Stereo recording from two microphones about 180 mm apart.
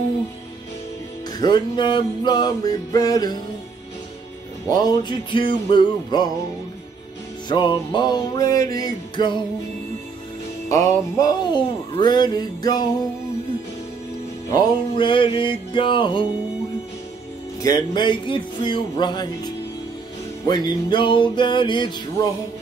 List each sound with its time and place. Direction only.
1.4 s music: 25° left (ahead or behind)
4.6 s music: 25° left (ahead or behind)
7.4 s music: 25° left (ahead or behind)
10.7 s music: 20° left (ahead or behind)
14.5 s music: 25° left (ahead or behind)
17.6 s music: 20° left (ahead or behind)